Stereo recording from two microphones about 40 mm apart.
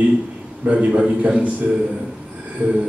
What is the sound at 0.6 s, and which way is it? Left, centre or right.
A man's voice, right.